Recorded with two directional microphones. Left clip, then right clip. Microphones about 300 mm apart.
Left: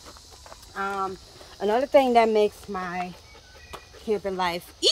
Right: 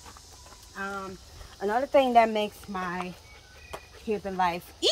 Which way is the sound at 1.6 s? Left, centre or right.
Left.